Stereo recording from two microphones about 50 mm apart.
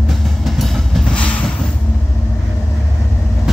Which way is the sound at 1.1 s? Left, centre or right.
Left.